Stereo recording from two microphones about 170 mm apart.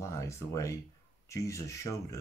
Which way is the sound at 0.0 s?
15° left (ahead or behind).